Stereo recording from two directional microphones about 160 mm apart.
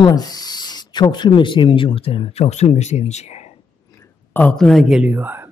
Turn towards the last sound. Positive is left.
turn(degrees=-10)  # may be behind; listen again after turning